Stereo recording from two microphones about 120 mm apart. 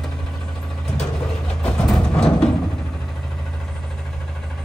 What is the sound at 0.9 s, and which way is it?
Vehicle, 5° left (ahead or behind).